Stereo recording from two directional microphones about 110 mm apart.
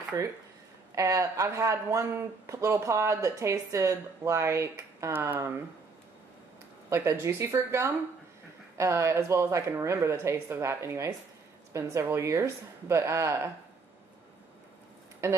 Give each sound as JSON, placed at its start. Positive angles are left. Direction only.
{"t": 0.1, "sound": "speech", "side_deg": -35}
{"t": 6.9, "sound": "speech", "side_deg": -20}
{"t": 15.2, "sound": "speech", "side_deg": -25}